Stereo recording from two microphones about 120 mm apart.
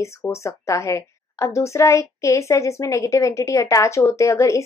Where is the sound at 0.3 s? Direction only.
25° left (ahead or behind).